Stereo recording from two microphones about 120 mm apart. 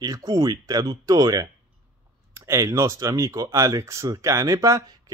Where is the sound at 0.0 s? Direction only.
30° right (ahead or behind).